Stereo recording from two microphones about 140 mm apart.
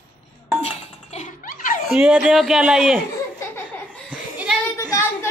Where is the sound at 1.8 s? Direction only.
5° right (ahead or behind).